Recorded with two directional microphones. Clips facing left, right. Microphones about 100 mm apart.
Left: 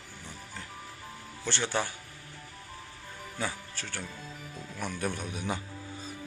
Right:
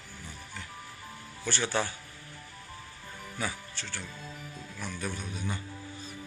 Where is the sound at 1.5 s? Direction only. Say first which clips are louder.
Right 1 dB; 20° left (ahead or behind).